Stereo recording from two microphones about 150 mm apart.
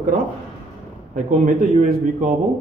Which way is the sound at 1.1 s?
60° right (ahead or behind).